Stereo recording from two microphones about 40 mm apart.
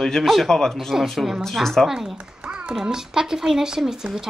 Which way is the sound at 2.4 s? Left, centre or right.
Right.